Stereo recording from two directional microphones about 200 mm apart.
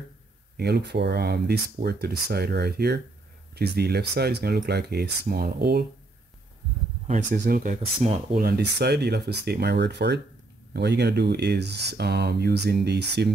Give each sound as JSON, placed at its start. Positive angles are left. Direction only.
{"t": 0.6, "sound": "speech", "side_deg": -55}
{"t": 7.3, "sound": "speech", "side_deg": -45}
{"t": 8.4, "sound": "speech", "side_deg": -50}